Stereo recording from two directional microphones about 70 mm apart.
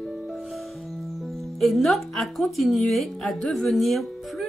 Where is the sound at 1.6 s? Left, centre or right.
Centre.